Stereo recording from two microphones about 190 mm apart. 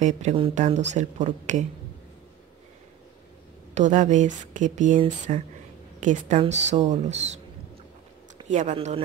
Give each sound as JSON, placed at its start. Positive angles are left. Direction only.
{"t": 0.0, "sound": "speech", "side_deg": -35}
{"t": 3.7, "sound": "speech", "side_deg": -40}
{"t": 8.5, "sound": "speech", "side_deg": -40}